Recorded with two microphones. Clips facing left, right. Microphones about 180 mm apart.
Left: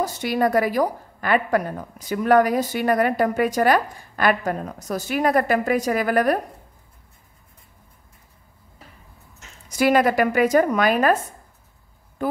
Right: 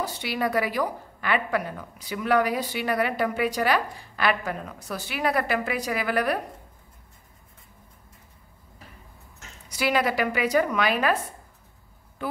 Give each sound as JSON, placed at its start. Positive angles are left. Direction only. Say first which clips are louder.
{"t": 0.0, "sound": "a woman's voice", "louder": "left 6 dB", "side_deg": 45}
{"t": 9.7, "sound": "a woman's voice", "louder": "left 7 dB", "side_deg": 50}
{"t": 12.2, "sound": "speech", "louder": "left 7 dB", "side_deg": 45}